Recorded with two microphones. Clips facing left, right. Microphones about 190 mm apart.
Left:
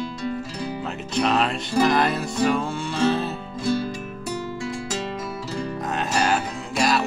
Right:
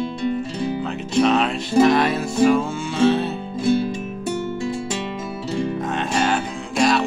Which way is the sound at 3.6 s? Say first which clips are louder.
Right 5 dB; 25° right (ahead or behind).